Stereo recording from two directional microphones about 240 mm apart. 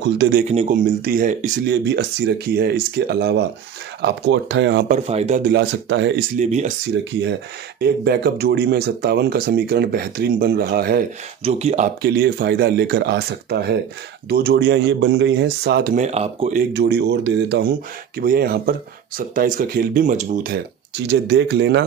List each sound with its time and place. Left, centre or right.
0.0 s speech: right
0.5 s speech: right
4.8 s speech: right
5.5 s speech: right
6.3 s speech: right
7.8 s speech: right
11.4 s speech: right
12.0 s speech: right
21.1 s speech: right